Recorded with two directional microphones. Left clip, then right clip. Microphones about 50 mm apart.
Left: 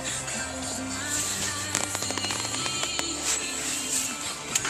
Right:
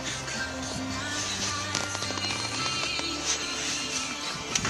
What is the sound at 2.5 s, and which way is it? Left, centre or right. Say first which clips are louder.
Music: even; right.